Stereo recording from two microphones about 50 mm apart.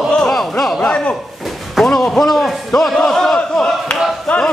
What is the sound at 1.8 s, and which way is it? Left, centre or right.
A man's voice, centre.